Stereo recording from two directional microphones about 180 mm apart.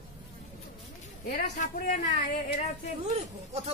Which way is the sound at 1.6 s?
45° left (ahead or behind).